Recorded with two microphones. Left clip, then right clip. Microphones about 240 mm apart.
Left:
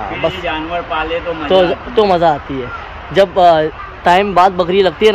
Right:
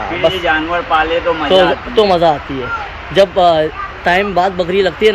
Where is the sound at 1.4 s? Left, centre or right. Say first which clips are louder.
Left 1 dB; centre.